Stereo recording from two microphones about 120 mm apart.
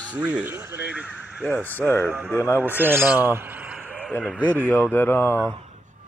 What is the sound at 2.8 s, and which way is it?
A man's voice, 15° right (ahead or behind).